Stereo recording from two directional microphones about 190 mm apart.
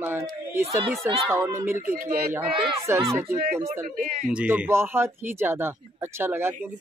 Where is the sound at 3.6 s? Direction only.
45° right (ahead or behind).